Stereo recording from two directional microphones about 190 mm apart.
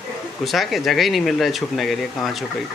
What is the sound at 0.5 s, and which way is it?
Speech, centre (ahead or behind).